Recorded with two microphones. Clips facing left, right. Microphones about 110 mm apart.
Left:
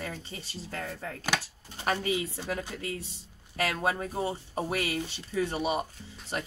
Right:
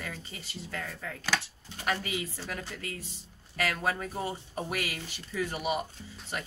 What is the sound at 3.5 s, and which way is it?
Speech, 30° left (ahead or behind).